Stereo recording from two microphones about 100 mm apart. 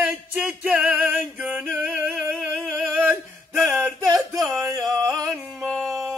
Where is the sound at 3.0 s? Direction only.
Centre (ahead or behind).